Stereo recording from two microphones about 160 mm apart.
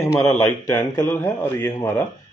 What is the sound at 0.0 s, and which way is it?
A man's voice, 20° left (ahead or behind).